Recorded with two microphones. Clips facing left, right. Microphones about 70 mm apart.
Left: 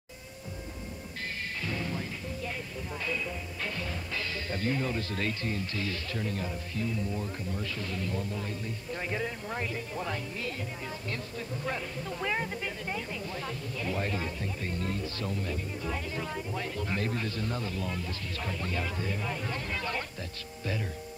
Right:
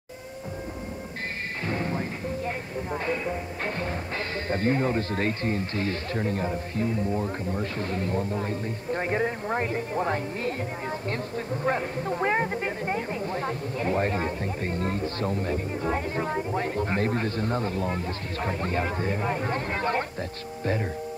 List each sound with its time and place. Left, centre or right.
1.6 s speech: right